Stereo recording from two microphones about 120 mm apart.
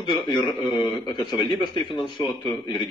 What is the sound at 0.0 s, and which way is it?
A man's voice, 40° left (ahead or behind).